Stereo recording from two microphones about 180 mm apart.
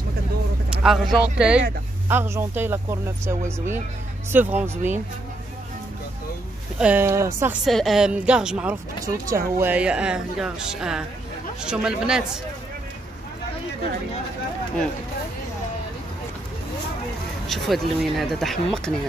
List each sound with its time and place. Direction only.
0.7 s speech: centre (ahead or behind)
6.8 s speech: 10° right (ahead or behind)
7.6 s speech: centre (ahead or behind)
9.0 s speech: 20° right (ahead or behind)
9.6 s speech: 10° right (ahead or behind)
17.5 s speech: centre (ahead or behind)